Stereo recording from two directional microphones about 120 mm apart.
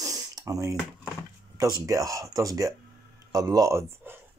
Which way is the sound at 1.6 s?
30° right (ahead or behind).